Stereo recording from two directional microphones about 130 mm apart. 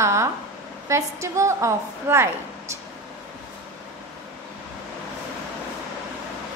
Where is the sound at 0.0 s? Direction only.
20° right (ahead or behind).